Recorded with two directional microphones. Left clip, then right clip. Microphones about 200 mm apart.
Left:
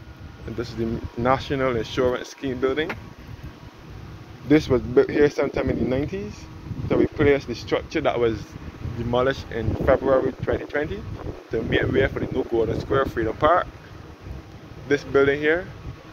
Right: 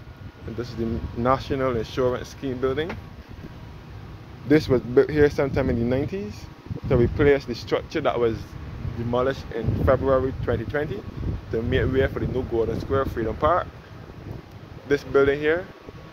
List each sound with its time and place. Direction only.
0.8 s speech: centre (ahead or behind)
4.5 s speech: 20° right (ahead or behind)
9.1 s speech: centre (ahead or behind)
14.9 s speech: 15° right (ahead or behind)